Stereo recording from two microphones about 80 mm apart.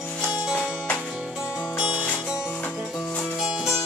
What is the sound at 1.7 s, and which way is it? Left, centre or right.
Music, centre.